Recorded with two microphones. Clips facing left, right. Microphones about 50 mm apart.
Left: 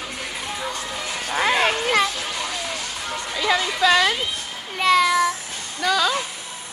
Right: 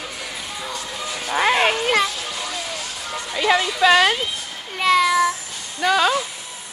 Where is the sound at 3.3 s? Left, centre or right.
Right.